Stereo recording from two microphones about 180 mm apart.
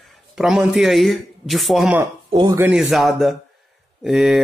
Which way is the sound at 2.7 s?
Centre (ahead or behind).